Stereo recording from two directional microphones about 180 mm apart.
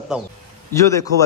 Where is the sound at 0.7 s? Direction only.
15° left (ahead or behind).